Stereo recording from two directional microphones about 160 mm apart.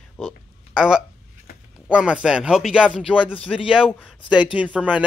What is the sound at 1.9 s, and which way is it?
Speech, 5° right (ahead or behind).